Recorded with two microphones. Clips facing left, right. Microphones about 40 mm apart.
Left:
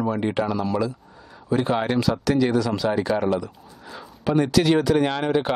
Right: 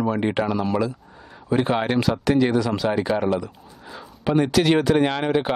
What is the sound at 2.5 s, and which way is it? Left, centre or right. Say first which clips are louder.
Speech: even; centre.